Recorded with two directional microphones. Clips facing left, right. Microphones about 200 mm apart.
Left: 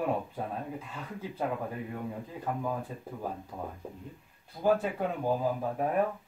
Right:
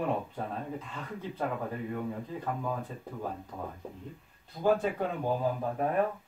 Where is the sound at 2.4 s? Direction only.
10° left (ahead or behind).